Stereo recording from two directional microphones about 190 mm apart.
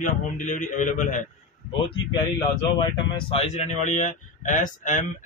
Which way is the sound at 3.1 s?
30° left (ahead or behind).